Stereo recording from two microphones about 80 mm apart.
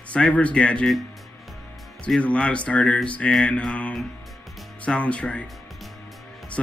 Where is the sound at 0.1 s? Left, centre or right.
Centre.